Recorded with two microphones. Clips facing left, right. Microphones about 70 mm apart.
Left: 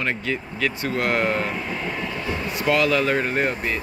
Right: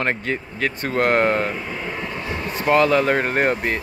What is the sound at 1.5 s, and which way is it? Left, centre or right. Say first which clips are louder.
Speech: even; centre.